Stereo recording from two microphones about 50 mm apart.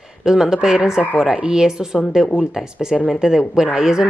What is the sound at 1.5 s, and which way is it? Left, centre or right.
Speech, centre.